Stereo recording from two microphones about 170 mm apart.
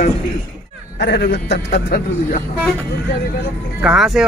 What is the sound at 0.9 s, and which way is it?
A man's voice, 75° left (ahead or behind).